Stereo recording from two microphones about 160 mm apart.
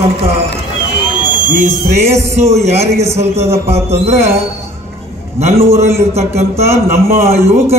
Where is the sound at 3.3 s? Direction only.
15° right (ahead or behind).